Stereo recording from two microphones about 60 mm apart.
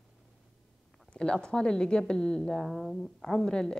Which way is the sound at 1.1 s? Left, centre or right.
Centre.